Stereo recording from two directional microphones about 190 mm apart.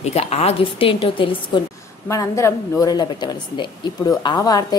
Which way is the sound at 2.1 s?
15° left (ahead or behind).